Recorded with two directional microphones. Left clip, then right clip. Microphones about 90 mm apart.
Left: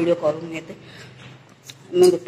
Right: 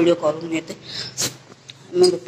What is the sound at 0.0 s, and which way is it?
Speech, 20° right (ahead or behind).